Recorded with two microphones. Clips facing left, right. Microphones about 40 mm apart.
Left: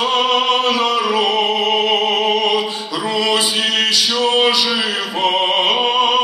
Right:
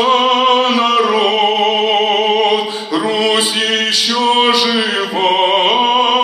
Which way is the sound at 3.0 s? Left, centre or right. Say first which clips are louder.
Right 3 dB; right.